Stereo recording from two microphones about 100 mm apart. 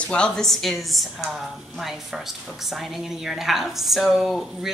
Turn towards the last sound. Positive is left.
turn(degrees=-5)  # may be behind; listen again after turning